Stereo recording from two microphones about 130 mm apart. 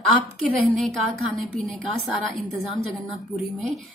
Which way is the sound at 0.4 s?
Centre (ahead or behind).